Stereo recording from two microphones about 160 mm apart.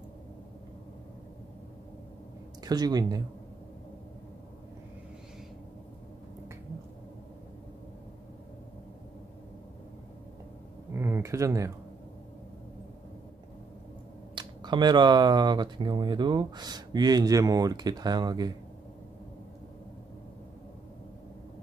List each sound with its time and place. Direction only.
2.6 s speech: 25° right (ahead or behind)
10.9 s a sound: 15° right (ahead or behind)
14.3 s speech: 30° right (ahead or behind)